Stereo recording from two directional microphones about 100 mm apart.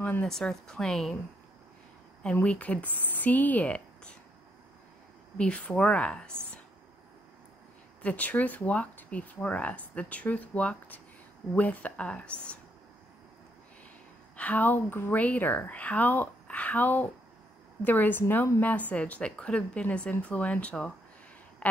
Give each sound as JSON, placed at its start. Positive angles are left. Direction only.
{"t": 0.0, "sound": "speech", "side_deg": 10}
{"t": 2.2, "sound": "speech", "side_deg": 10}
{"t": 5.4, "sound": "speech", "side_deg": 10}
{"t": 8.0, "sound": "speech", "side_deg": 15}
{"t": 14.3, "sound": "speech", "side_deg": 15}